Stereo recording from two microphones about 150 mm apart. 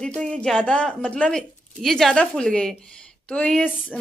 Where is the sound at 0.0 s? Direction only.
5° left (ahead or behind).